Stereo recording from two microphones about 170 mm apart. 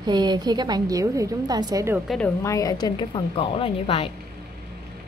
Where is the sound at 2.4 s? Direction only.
20° left (ahead or behind).